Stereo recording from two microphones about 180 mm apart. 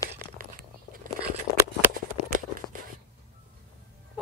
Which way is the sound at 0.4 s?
50° right (ahead or behind).